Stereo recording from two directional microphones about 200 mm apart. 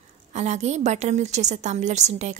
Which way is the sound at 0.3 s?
35° right (ahead or behind).